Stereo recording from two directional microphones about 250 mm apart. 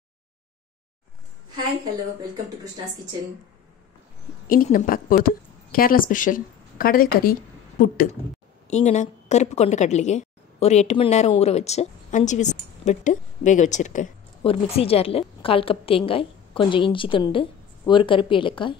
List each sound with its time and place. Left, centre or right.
4.5 s a woman's voice: left